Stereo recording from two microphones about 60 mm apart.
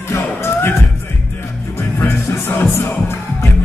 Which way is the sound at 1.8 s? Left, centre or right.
Left.